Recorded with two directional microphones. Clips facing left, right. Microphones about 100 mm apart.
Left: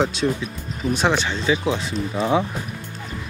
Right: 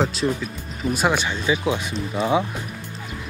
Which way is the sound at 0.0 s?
Centre (ahead or behind).